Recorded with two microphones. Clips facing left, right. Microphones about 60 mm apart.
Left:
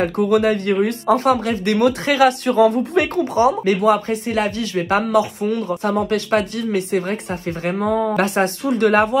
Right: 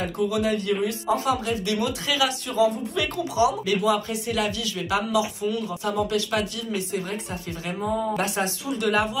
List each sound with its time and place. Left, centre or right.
0.0 s speech: left
3.0 s speech: left